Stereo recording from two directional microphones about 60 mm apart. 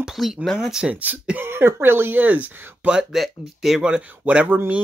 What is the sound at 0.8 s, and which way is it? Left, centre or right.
Speech, right.